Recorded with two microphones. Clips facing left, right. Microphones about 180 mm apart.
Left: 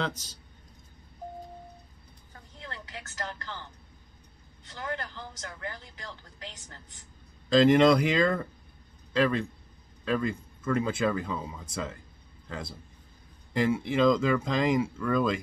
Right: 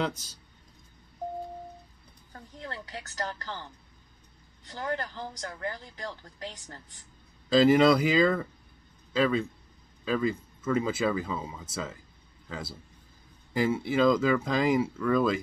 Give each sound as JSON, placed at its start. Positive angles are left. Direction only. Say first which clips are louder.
{"t": 0.0, "sound": "speech", "louder": "right 2 dB", "side_deg": -10}
{"t": 2.6, "sound": "speech", "louder": "right 3 dB", "side_deg": -40}
{"t": 4.6, "sound": "speech", "louder": "right 3 dB", "side_deg": -40}
{"t": 7.4, "sound": "a man's voice", "louder": "even", "side_deg": -5}